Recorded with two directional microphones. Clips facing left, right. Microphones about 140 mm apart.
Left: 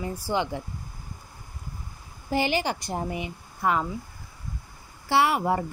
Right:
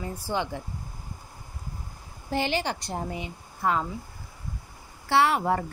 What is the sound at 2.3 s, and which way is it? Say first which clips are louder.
Speech: left 2 dB; 10° left (ahead or behind).